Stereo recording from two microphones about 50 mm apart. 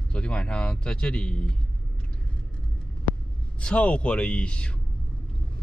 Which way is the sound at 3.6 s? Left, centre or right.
Left.